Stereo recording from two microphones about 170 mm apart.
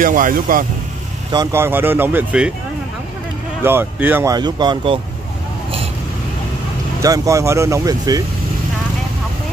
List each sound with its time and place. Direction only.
0.0 s speech: 50° right (ahead or behind)
1.3 s speech: 20° right (ahead or behind)
3.6 s speech: 10° right (ahead or behind); by 5.0 s 30° right (ahead or behind)
7.0 s speech: 20° right (ahead or behind)